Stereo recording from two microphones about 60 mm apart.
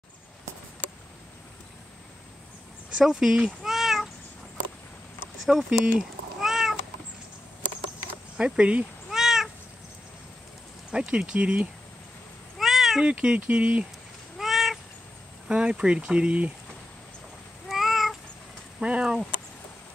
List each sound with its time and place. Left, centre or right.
3.0 s speech: centre
5.5 s speech: centre
5.9 s cat: centre
8.4 s speech: centre
9.1 s cat: centre
10.9 s speech: centre
12.5 s cat: centre
13.0 s speech: centre
14.4 s cat: centre
15.4 s speech: centre
17.6 s cat: centre
18.8 s speech: centre